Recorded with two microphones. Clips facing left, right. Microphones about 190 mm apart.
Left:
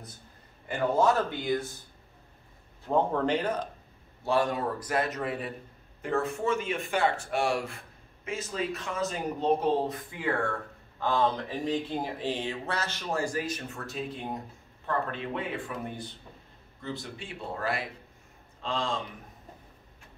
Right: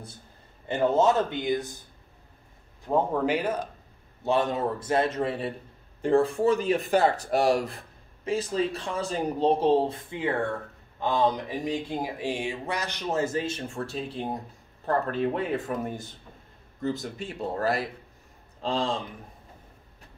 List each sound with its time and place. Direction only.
0.7 s a man's voice: 25° right (ahead or behind)
2.9 s speech: 10° right (ahead or behind)
4.2 s a man's voice: 20° right (ahead or behind)